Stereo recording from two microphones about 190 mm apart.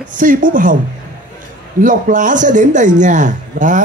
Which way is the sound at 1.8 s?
45° right (ahead or behind).